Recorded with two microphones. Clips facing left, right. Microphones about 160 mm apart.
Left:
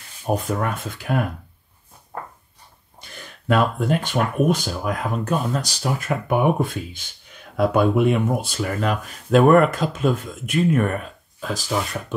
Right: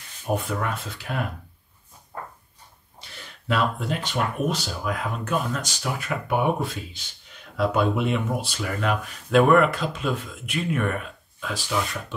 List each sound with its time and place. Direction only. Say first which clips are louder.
0.3 s speech: left 3 dB; 45° left (ahead or behind)
3.4 s speech: left 5 dB; 45° left (ahead or behind)